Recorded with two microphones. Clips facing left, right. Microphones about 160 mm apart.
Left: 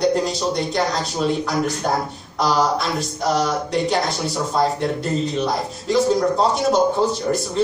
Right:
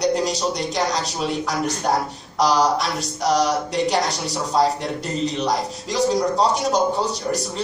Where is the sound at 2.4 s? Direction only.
40° right (ahead or behind).